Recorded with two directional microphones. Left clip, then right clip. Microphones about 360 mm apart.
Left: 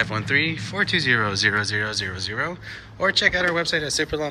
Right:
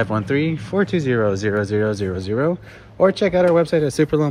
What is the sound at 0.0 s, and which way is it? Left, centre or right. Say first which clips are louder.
A man's voice: right 1 dB; centre.